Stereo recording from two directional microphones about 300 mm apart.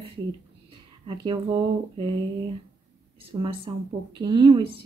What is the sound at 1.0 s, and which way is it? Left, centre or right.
Speech, centre.